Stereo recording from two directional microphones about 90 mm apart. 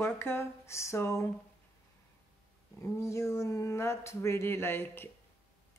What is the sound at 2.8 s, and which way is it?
Speech, 30° left (ahead or behind).